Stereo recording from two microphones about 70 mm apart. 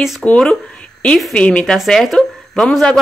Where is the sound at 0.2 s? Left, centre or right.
Centre.